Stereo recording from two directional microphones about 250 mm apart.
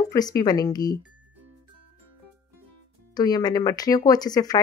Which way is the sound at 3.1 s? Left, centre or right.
Centre.